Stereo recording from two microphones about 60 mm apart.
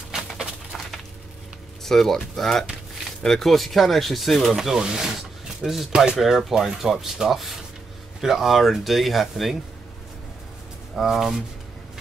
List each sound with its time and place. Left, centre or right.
0.4 s a sound: centre
1.9 s speech: centre
5.9 s speech: centre
11.0 s speech: centre